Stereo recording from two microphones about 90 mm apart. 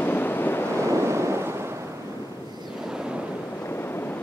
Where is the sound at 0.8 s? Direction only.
35° right (ahead or behind).